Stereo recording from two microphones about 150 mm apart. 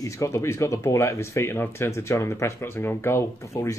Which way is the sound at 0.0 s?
20° left (ahead or behind).